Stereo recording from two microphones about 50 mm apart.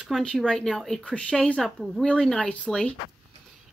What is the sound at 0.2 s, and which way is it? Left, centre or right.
Speech, centre.